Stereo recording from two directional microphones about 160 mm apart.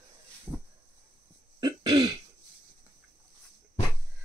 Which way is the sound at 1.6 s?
25° right (ahead or behind).